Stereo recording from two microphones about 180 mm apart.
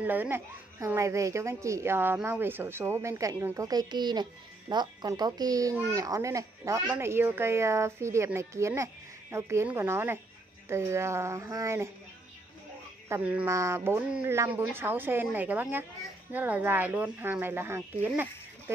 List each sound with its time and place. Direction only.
0.0 s a woman's voice: 10° right (ahead or behind)
13.1 s a woman's voice: 10° right (ahead or behind)